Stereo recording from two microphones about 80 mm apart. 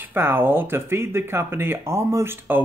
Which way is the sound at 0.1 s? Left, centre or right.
Right.